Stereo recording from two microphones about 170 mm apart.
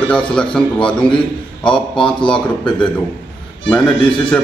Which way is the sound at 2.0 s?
5° left (ahead or behind).